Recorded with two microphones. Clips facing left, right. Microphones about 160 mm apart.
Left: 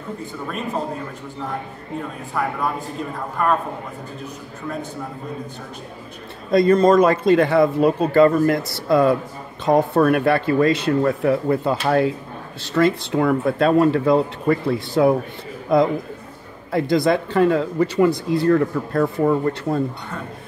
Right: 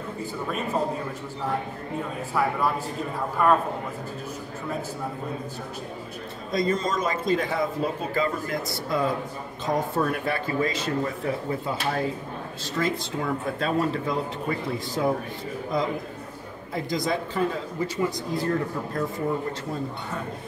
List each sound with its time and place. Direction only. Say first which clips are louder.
2.4 s a man's voice: left 1 dB; 5° right (ahead or behind)
6.5 s a man's voice: left 12 dB; 60° left (ahead or behind)